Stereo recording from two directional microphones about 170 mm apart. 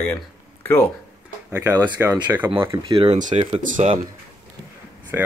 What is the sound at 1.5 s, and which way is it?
Speech, 20° right (ahead or behind).